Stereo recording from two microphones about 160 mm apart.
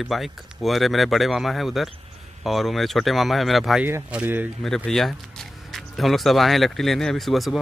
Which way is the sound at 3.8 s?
10° right (ahead or behind).